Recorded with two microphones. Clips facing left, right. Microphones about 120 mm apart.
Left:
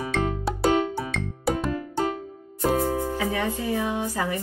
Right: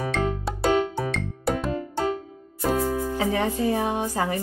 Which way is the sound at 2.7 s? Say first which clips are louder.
Even; 35° left (ahead or behind).